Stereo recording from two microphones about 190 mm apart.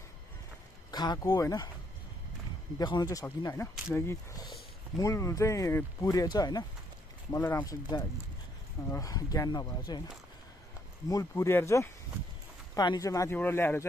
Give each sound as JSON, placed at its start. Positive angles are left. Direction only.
{"t": 0.9, "sound": "speech", "side_deg": 20}
{"t": 2.8, "sound": "speech", "side_deg": 20}
{"t": 8.9, "sound": "speech", "side_deg": 20}
{"t": 11.1, "sound": "speech", "side_deg": 15}